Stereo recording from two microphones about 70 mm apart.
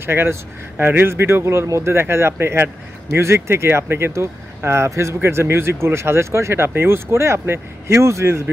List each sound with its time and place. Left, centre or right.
0.0 s speech: right